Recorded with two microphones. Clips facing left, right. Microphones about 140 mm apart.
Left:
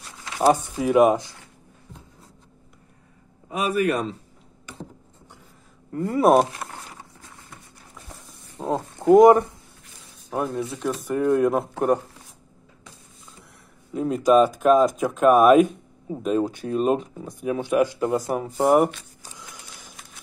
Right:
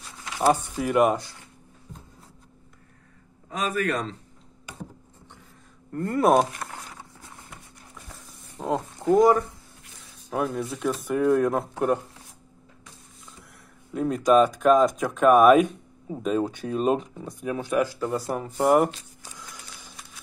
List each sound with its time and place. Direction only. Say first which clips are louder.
0.4 s speech: left 3 dB; 15° left (ahead or behind)
3.4 s speech: left 4 dB; 10° left (ahead or behind)
5.9 s speech: left 3 dB; centre (ahead or behind)
8.6 s speech: left 1 dB; centre (ahead or behind)
9.0 s speech: left 6 dB; 20° left (ahead or behind)
10.3 s speech: left 1 dB; centre (ahead or behind)
13.9 s speech: left 2 dB; 5° left (ahead or behind)
18.5 s speech: left 2 dB; centre (ahead or behind)
19.4 s a sound: left 1 dB; 15° left (ahead or behind)